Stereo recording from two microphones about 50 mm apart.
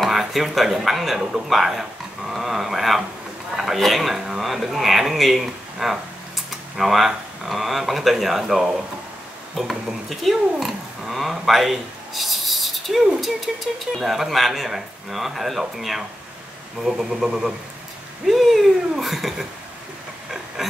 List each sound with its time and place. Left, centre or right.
0.0 s speech: centre
13.9 s speech: centre